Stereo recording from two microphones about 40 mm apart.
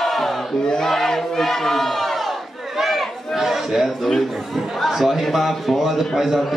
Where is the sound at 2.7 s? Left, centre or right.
Centre.